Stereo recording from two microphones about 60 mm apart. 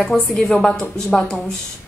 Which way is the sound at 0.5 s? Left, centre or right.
Centre.